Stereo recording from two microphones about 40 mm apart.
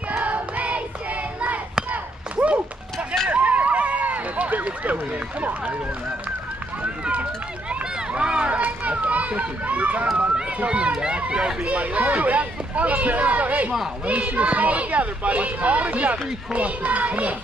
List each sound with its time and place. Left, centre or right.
0.2 s child singing: right
2.3 s clip-clop: right
3.3 s run: right
7.8 s run: right
10.6 s speech: right